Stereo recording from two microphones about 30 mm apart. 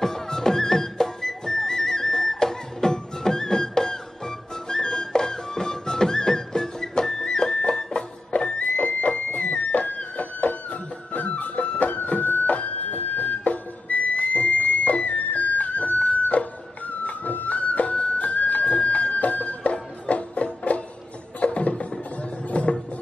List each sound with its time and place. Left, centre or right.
0.0 s music: centre; by 12.5 s left
12.9 s whistle: left
18.6 s a sound: left
19.1 s music: left